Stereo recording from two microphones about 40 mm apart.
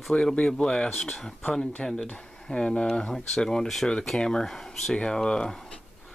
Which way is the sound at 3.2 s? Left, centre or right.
Centre.